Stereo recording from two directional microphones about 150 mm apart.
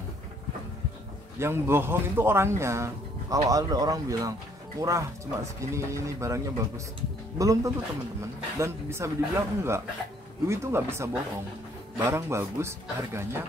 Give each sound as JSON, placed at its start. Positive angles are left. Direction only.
{"t": 1.4, "sound": "speech", "side_deg": -15}